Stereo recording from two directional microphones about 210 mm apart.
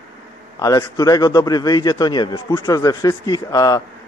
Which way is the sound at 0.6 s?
15° left (ahead or behind).